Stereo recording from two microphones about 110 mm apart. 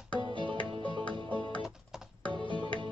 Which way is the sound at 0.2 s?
45° right (ahead or behind).